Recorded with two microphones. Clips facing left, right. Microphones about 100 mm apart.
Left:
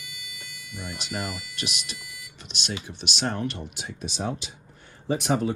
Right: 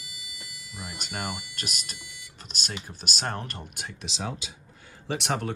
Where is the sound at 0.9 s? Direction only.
45° right (ahead or behind).